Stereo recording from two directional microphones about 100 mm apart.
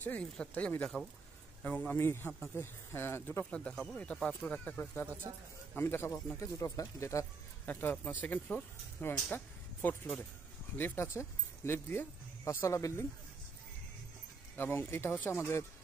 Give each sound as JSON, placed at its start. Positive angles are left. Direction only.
{"t": 0.0, "sound": "speech", "side_deg": 15}
{"t": 2.0, "sound": "speech", "side_deg": 25}
{"t": 7.6, "sound": "speech", "side_deg": 20}
{"t": 14.6, "sound": "speech", "side_deg": 25}